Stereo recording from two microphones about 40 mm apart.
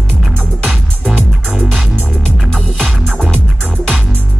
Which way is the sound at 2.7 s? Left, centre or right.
Centre.